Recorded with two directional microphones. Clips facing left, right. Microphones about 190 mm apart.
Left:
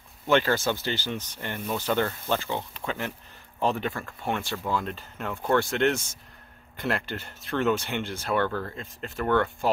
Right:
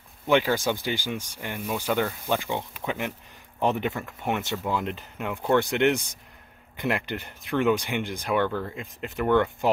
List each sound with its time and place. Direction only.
0.3 s speech: 15° right (ahead or behind)